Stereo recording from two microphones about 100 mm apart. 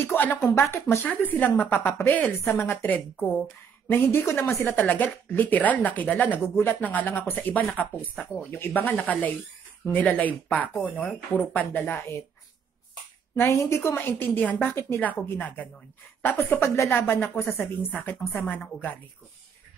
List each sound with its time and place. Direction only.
0.0 s a woman's voice: 20° left (ahead or behind)
4.7 s a woman's voice: 15° left (ahead or behind)
13.4 s a woman's voice: 30° left (ahead or behind)